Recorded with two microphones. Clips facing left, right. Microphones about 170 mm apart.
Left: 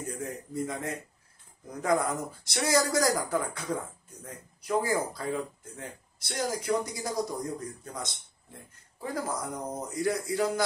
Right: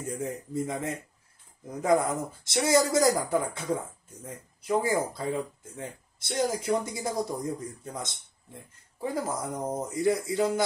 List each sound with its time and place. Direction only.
0.0 s speech: 20° right (ahead or behind)